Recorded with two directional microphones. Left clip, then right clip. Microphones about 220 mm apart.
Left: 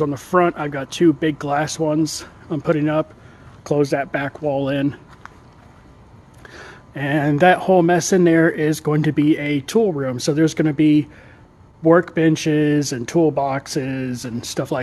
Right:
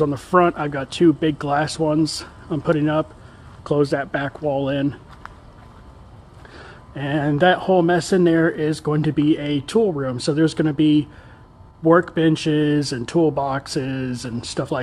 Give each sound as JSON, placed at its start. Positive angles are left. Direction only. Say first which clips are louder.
{"t": 0.0, "sound": "speech", "louder": "right 1 dB", "side_deg": 0}
{"t": 6.5, "sound": "speech", "louder": "left 3 dB", "side_deg": 15}